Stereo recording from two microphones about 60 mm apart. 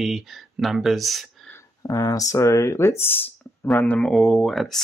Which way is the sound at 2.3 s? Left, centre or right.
Left.